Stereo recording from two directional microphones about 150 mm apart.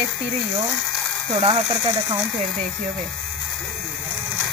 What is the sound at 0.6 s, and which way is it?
Ratchet, centre (ahead or behind).